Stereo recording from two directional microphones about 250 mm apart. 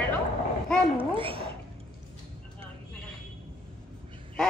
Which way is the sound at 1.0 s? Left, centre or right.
Right.